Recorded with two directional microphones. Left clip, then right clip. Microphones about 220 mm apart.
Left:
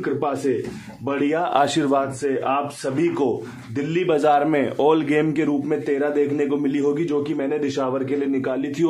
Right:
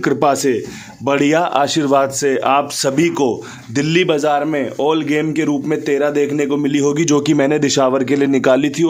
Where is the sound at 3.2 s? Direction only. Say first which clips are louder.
Right 5 dB; 40° right (ahead or behind).